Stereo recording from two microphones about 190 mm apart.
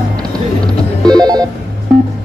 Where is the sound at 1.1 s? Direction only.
20° right (ahead or behind).